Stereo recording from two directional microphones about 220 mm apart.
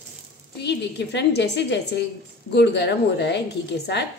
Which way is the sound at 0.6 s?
50° left (ahead or behind).